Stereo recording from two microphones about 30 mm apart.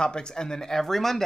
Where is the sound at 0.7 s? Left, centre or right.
Centre.